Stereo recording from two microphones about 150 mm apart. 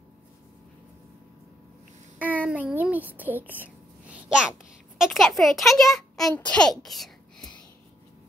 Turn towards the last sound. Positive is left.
turn(degrees=0)  # may be behind; listen again after turning